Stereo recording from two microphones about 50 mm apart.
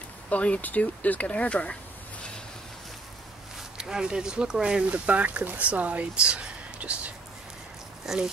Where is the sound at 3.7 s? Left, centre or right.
Centre.